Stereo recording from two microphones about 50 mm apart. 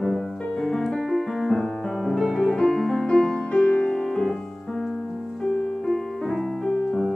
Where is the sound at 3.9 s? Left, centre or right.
Centre.